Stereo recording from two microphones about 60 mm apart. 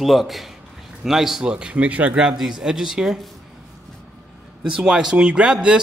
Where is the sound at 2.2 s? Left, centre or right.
Centre.